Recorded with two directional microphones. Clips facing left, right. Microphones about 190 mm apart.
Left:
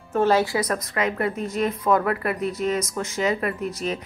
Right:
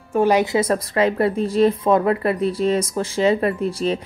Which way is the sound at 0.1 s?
15° right (ahead or behind).